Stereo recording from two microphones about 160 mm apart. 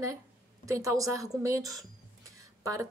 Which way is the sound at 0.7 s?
20° right (ahead or behind).